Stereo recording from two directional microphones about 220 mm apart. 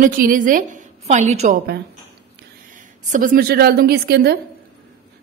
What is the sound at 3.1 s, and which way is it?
A woman's voice, 40° right (ahead or behind).